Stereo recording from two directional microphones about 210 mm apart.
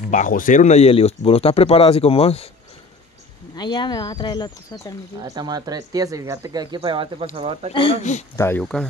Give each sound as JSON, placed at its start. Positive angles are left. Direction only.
{"t": 0.1, "sound": "speech", "side_deg": 40}
{"t": 3.5, "sound": "speech", "side_deg": 20}
{"t": 5.2, "sound": "speech", "side_deg": -20}
{"t": 7.7, "sound": "speech", "side_deg": 25}
{"t": 8.4, "sound": "speech", "side_deg": 10}